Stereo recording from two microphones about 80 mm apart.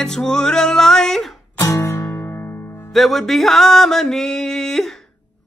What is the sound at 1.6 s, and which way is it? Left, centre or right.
Music, left.